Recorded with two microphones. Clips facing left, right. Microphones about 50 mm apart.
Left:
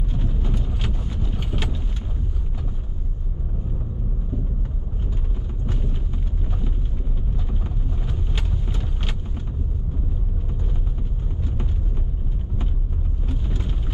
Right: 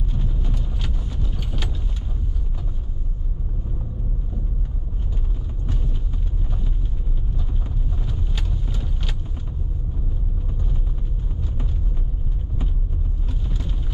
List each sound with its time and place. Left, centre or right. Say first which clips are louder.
0.2 s vehicle: left 2 dB; centre
8.1 s vehicle: left 2 dB; centre
13.3 s vehicle: left 3 dB; left